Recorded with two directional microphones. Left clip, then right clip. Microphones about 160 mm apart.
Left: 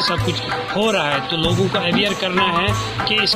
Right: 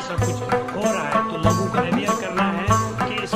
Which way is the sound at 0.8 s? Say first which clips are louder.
Left 2 dB; centre (ahead or behind).